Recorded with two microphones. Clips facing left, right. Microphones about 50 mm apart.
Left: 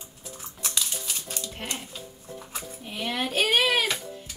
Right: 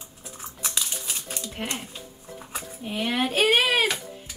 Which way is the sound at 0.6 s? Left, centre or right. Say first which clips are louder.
Even; centre.